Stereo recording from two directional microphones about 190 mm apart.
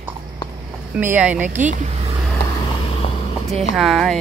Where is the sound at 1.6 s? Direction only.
40° right (ahead or behind).